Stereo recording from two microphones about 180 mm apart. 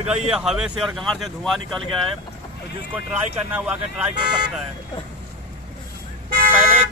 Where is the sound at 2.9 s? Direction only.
10° right (ahead or behind).